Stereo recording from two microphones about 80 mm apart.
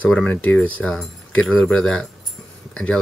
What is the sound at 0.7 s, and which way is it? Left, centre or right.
Speech, centre.